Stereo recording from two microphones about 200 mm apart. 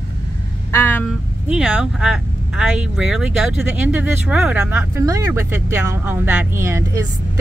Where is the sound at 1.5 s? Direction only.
Centre (ahead or behind).